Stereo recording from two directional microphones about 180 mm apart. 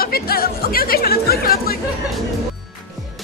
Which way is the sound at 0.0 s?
55° left (ahead or behind).